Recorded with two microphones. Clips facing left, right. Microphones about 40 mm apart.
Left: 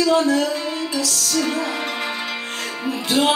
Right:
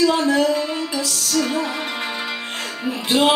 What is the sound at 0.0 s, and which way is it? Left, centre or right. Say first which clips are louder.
Music: even; right.